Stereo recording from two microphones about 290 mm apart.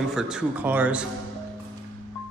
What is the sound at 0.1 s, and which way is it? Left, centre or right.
Speech, centre.